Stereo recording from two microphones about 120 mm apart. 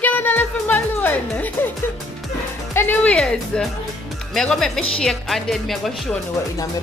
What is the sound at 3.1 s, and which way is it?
Speech, 5° left (ahead or behind).